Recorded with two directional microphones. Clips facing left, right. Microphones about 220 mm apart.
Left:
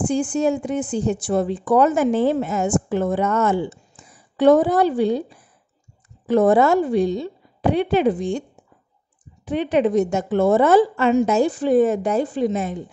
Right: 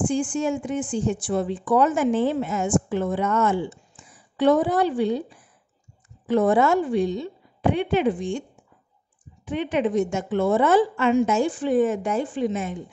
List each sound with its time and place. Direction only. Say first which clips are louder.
0.0 s speech: left 3 dB; 40° left (ahead or behind)